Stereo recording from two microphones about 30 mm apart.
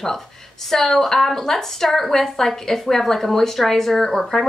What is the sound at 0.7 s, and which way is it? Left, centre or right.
A woman's voice, centre.